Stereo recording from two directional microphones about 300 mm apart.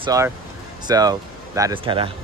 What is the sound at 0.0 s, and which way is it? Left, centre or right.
Speech, centre.